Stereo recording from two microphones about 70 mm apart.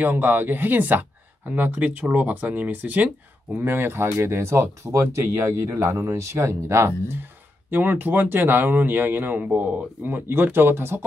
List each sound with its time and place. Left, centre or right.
0.0 s speech: right